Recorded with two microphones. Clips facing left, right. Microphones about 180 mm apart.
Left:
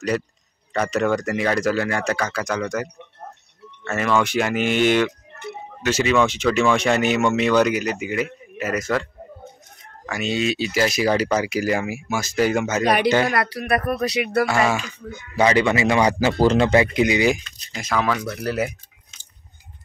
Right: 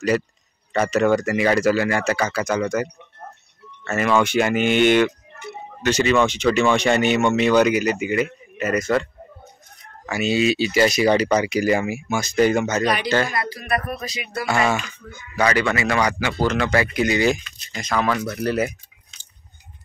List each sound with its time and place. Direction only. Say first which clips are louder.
0.7 s speech: right 3 dB; centre (ahead or behind)
10.0 s speech: right 3 dB; 5° right (ahead or behind)
12.8 s speech: left 4 dB; 55° left (ahead or behind)
13.3 s speech: left 3 dB; 70° left (ahead or behind)
14.4 s speech: right 1 dB; 5° left (ahead or behind)
15.0 s a man's voice: left 3 dB; 20° left (ahead or behind)
16.2 s speech: left 5 dB; 35° left (ahead or behind); by 18.7 s centre (ahead or behind)